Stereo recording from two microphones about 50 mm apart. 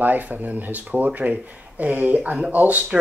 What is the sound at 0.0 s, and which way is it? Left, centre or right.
Speech, right.